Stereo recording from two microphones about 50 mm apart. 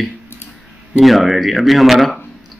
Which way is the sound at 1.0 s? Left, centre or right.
Centre.